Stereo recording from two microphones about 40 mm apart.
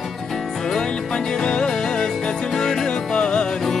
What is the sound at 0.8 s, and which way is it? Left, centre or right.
Music, centre.